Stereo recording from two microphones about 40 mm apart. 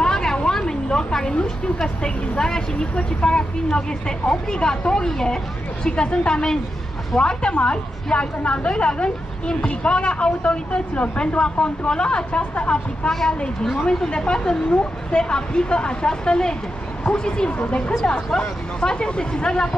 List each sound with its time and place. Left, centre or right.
0.0 s a sound: centre
2.0 s speech: centre
13.1 s speech: centre
14.1 s speech: left